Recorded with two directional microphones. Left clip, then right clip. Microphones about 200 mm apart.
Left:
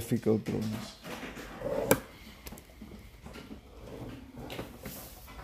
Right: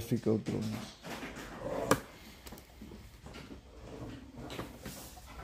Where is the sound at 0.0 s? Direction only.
15° left (ahead or behind).